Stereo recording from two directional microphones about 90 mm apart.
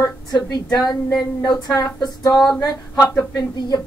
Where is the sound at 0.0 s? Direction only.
50° left (ahead or behind).